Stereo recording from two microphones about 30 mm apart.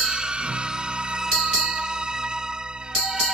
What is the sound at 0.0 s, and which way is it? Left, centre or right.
Music, right.